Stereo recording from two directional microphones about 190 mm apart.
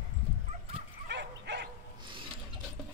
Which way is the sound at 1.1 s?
65° right (ahead or behind).